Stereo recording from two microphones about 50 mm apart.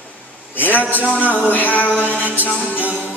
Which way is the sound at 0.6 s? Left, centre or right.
Left.